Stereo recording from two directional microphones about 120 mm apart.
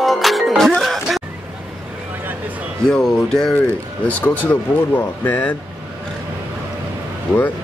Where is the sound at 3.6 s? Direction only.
15° left (ahead or behind).